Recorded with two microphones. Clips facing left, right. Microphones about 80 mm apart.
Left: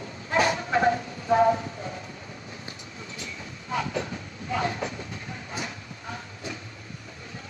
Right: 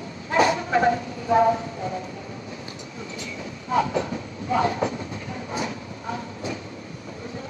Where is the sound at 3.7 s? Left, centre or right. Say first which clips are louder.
Right 7 dB; right.